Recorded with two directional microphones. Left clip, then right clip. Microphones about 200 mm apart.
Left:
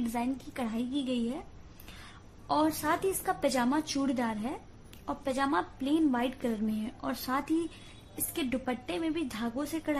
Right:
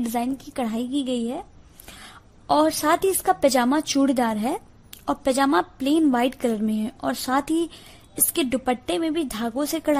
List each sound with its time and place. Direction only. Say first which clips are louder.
0.1 s a woman's voice: right 8 dB; 40° right (ahead or behind)
2.4 s a woman's voice: right 9 dB; 45° right (ahead or behind)